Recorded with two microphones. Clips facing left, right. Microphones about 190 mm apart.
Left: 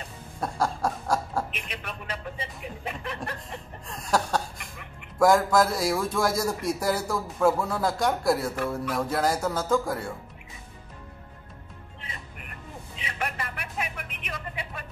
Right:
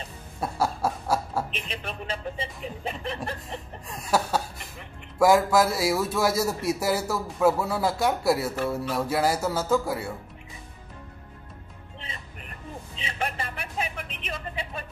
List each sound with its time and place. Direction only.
0.4 s chuckle: 5° right (ahead or behind)
1.5 s speech: 30° right (ahead or behind)
3.8 s chuckle: 5° right (ahead or behind)
5.2 s speech: 5° right (ahead or behind)
12.9 s a sound: 30° right (ahead or behind)